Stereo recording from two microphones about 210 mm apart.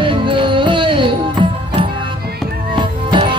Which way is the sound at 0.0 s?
25° right (ahead or behind).